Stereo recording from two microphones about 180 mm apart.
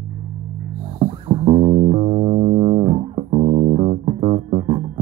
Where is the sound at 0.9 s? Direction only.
30° right (ahead or behind).